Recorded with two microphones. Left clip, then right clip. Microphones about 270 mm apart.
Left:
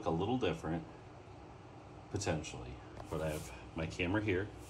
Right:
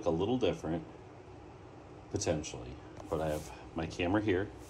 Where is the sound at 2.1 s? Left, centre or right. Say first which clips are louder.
Right 4 dB; centre.